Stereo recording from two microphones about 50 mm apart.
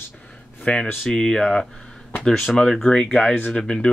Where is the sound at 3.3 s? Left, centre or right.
Left.